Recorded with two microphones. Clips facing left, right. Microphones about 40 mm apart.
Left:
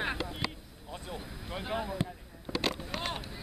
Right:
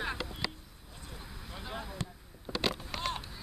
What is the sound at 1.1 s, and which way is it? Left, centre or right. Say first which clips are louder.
Vehicle: left 5 dB; left.